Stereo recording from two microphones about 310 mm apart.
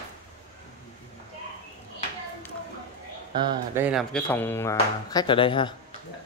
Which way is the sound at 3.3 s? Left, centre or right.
Centre.